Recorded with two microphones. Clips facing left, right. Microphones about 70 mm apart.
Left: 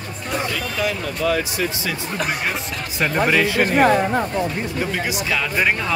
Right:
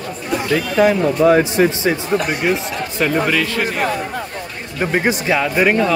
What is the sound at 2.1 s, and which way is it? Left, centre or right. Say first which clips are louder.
Speech: right 6 dB; centre.